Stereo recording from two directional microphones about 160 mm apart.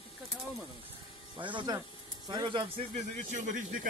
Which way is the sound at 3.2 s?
50° right (ahead or behind).